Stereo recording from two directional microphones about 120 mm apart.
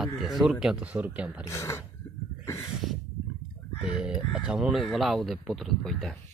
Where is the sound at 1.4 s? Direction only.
25° left (ahead or behind).